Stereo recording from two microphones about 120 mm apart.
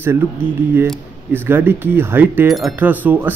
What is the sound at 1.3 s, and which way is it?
A man's voice, 15° right (ahead or behind).